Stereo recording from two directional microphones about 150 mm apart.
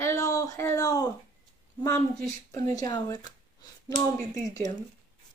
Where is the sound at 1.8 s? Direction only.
20° left (ahead or behind).